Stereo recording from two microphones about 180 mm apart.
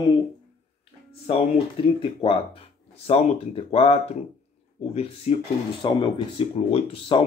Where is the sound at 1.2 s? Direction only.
35° left (ahead or behind).